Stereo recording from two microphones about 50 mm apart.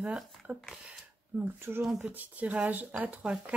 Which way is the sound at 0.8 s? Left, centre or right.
Right.